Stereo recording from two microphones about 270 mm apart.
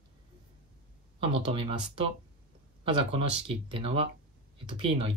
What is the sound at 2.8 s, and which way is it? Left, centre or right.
Speech, right.